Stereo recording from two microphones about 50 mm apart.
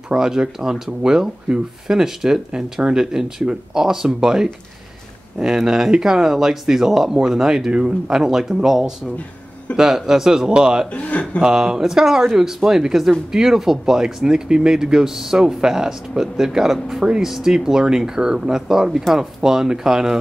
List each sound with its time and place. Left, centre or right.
0.1 s speech: centre
10.9 s speech: left
11.4 s speech: centre